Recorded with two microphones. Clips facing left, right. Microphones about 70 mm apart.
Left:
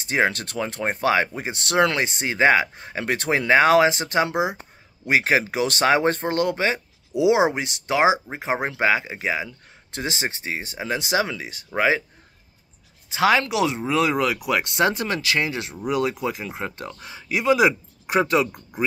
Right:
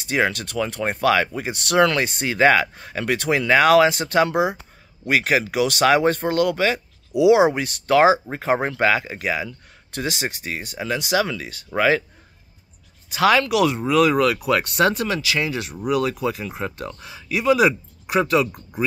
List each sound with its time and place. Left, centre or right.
0.0 s speech: left
13.1 s speech: left
15.0 s speech: left